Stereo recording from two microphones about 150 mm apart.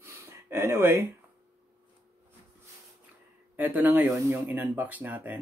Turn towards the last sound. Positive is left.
turn(degrees=-10)  # may be behind; listen again after turning